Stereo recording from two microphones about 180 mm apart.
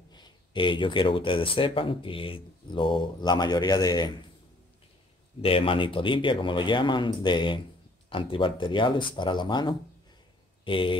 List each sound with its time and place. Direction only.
0.1 s speech: 25° left (ahead or behind)
5.4 s speech: 30° left (ahead or behind)